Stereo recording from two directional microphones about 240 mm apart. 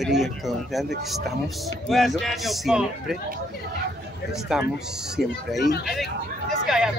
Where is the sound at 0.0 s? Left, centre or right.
Centre.